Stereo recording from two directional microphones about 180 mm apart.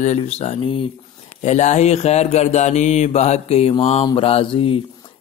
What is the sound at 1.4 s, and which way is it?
Speech, 40° left (ahead or behind).